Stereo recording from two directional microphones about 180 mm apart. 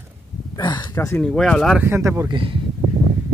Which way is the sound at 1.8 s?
15° right (ahead or behind).